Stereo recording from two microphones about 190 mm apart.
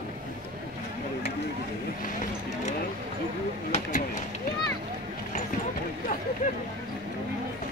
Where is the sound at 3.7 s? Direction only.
40° left (ahead or behind).